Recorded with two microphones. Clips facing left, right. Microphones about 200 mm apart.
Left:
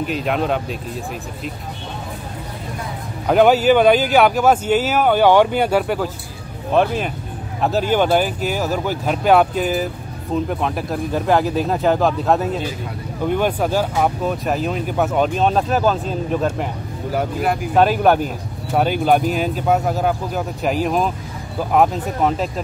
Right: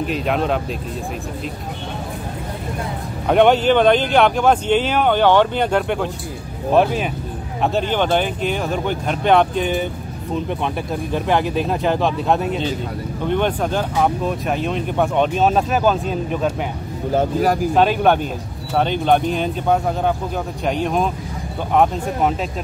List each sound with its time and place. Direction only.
0.0 s speech: centre (ahead or behind)
3.3 s speech: 5° left (ahead or behind)
17.1 s speech: 25° right (ahead or behind)
17.7 s speech: 5° left (ahead or behind)